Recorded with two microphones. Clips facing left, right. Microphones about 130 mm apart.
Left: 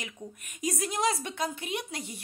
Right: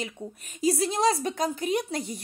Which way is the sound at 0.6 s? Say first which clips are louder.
Right 6 dB; 30° right (ahead or behind).